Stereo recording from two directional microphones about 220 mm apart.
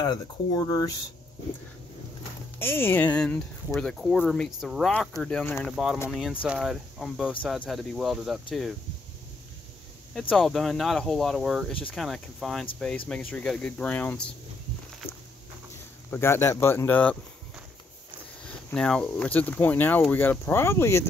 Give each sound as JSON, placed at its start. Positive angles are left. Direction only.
{"t": 0.1, "sound": "speech", "side_deg": 15}
{"t": 2.6, "sound": "speech", "side_deg": 10}
{"t": 10.3, "sound": "speech", "side_deg": 0}
{"t": 16.1, "sound": "speech", "side_deg": 10}
{"t": 18.7, "sound": "speech", "side_deg": 5}